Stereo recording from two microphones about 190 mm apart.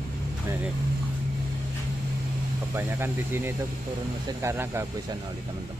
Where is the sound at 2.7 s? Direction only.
10° right (ahead or behind).